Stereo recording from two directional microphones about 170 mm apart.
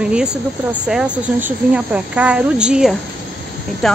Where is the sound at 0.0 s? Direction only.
5° right (ahead or behind).